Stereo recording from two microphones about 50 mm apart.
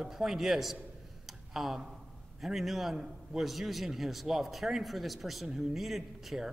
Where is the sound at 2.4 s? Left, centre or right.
Centre.